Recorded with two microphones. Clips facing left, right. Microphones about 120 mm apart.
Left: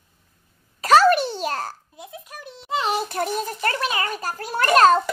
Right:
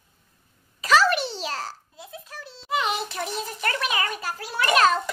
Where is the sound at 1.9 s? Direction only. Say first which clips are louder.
Left 2 dB; 20° left (ahead or behind).